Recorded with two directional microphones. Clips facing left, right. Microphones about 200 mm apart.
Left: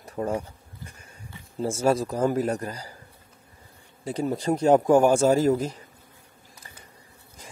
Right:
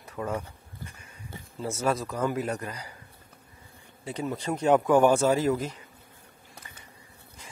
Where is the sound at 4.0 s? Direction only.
40° left (ahead or behind).